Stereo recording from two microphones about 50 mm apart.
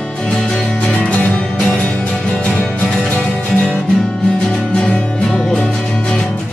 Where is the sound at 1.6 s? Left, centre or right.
Centre.